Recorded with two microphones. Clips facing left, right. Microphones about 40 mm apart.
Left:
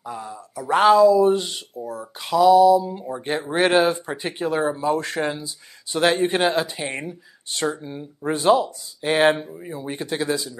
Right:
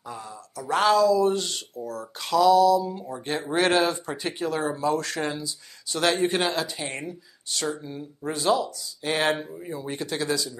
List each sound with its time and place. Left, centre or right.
0.0 s speech: centre